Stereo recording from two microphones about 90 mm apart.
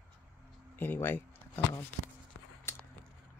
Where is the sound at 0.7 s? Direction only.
25° left (ahead or behind).